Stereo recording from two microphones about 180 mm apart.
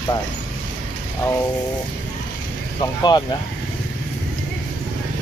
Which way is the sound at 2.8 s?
20° left (ahead or behind).